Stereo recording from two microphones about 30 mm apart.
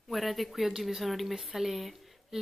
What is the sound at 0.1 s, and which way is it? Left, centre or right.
A woman's voice, centre.